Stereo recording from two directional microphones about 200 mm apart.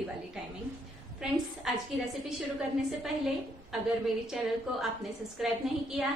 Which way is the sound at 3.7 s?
Centre (ahead or behind).